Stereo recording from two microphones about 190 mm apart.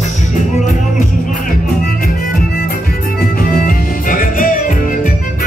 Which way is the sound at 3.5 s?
45° left (ahead or behind).